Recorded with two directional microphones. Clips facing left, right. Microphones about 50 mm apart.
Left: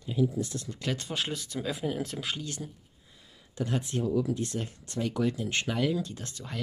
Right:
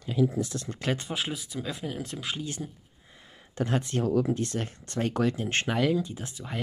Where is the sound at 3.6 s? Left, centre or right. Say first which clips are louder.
Right 3 dB; right.